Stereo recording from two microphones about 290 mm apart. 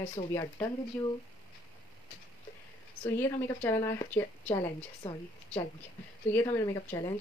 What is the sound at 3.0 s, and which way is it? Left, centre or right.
Speech, centre.